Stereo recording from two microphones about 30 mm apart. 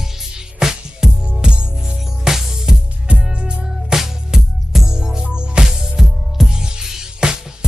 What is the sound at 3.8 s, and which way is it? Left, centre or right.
Music, centre.